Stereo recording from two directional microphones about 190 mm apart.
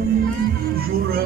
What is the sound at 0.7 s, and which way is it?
Music, 50° right (ahead or behind).